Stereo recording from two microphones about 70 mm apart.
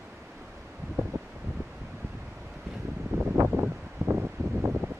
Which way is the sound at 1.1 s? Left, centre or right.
Right.